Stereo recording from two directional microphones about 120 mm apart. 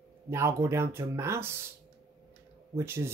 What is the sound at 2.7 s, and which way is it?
Speech, 20° right (ahead or behind).